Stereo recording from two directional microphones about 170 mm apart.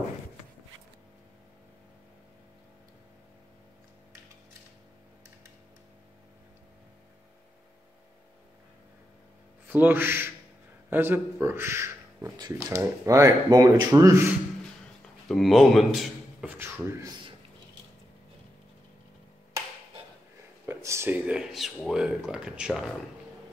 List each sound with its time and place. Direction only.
9.7 s speech: 10° right (ahead or behind)
15.2 s speech: centre (ahead or behind)
20.6 s speech: 15° right (ahead or behind)